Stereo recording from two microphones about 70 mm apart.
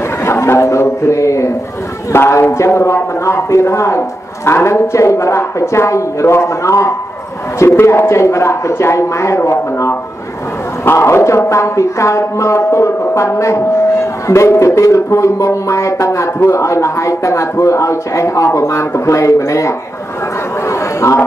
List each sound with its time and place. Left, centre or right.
0.2 s a sound: left
2.1 s speech: left
20.6 s chatter: left